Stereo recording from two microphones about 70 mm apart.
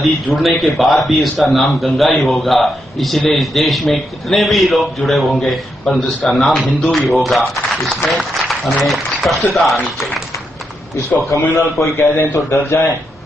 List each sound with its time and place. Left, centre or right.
0.0 s a man's voice: centre
11.2 s a man's voice: left